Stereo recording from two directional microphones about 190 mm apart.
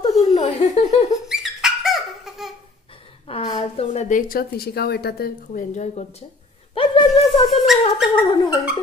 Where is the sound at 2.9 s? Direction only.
30° left (ahead or behind).